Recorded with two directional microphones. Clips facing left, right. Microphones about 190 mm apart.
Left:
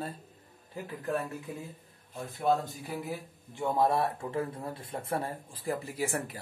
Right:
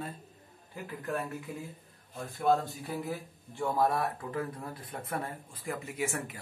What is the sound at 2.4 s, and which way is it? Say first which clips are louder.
A man's voice: right 1 dB; 15° left (ahead or behind).